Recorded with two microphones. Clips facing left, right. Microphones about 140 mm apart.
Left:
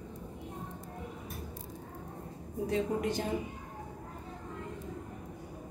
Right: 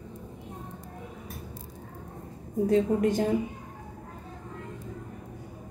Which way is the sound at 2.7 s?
45° right (ahead or behind).